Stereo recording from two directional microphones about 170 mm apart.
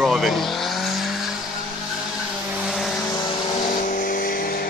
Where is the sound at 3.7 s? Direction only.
50° left (ahead or behind).